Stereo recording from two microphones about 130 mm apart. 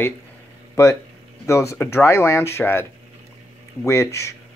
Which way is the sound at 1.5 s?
20° left (ahead or behind).